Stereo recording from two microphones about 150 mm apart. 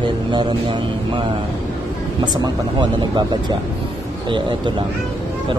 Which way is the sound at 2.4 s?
30° right (ahead or behind).